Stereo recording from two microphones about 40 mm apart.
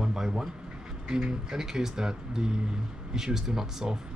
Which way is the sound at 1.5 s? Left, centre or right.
Centre.